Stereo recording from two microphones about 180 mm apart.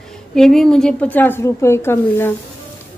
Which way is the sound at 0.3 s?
Centre (ahead or behind).